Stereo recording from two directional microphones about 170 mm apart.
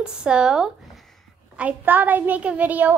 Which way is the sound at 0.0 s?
5° right (ahead or behind).